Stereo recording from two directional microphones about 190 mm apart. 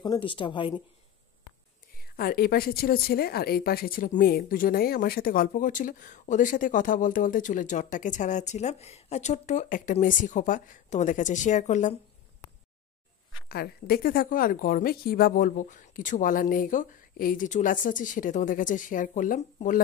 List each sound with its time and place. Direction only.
0.0 s speech: 25° left (ahead or behind)
2.0 s speech: 50° left (ahead or behind)
13.5 s speech: 55° left (ahead or behind)